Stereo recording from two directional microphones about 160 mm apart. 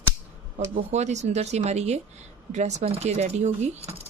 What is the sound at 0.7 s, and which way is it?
Speech, 45° right (ahead or behind).